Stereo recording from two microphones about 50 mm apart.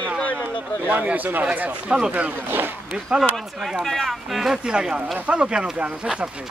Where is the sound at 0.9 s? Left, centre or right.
Right.